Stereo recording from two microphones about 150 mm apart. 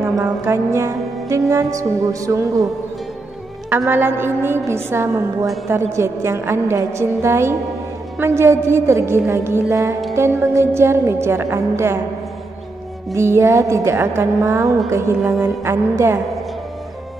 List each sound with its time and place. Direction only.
0.0 s music: 15° right (ahead or behind)
3.7 s a woman's voice: 15° right (ahead or behind)
13.1 s music: 20° right (ahead or behind)
15.4 s a woman's voice: 15° right (ahead or behind)